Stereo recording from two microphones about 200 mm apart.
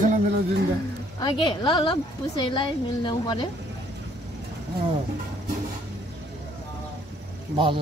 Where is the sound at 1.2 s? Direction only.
25° left (ahead or behind).